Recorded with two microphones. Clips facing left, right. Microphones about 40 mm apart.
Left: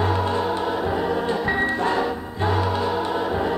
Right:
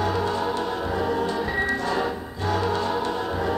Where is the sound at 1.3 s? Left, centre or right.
Left.